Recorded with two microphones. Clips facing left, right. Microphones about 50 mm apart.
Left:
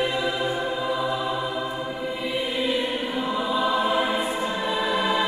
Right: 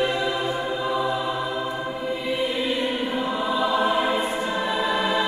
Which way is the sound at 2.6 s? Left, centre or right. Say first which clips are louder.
Even; centre.